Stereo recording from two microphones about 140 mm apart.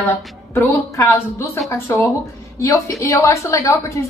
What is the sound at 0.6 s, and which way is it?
A woman's voice, 20° left (ahead or behind).